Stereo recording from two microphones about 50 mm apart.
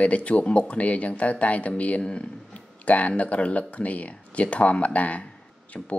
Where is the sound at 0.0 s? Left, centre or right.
Left.